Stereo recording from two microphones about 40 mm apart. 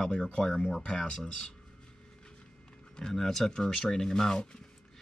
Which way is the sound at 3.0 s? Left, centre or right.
Centre.